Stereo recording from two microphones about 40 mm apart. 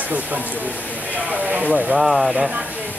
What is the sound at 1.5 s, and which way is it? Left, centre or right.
Speech, right.